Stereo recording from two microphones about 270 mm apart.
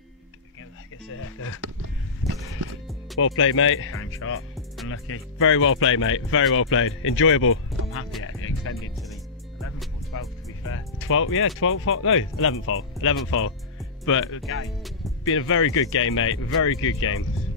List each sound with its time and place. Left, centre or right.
1.1 s speech: left
3.2 s speech: left
8.2 s music: left
10.1 s music: left
10.7 s speech: left